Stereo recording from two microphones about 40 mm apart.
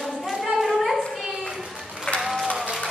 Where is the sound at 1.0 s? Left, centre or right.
Centre.